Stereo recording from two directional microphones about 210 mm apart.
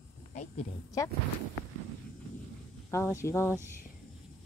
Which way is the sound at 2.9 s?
15° left (ahead or behind).